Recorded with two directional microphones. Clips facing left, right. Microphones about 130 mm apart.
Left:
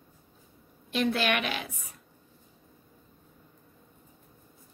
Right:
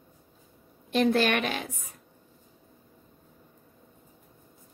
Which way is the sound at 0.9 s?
45° right (ahead or behind).